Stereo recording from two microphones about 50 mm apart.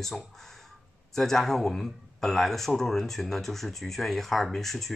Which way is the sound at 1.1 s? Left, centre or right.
Centre.